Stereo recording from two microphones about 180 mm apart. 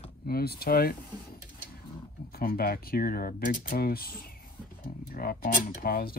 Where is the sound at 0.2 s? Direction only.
60° left (ahead or behind).